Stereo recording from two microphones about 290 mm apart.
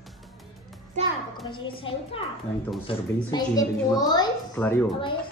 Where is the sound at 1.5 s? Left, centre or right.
Centre.